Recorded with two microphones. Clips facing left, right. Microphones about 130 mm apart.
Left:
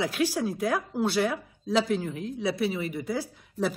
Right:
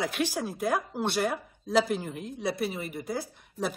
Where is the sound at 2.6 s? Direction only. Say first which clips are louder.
Left 4 dB; 50° right (ahead or behind).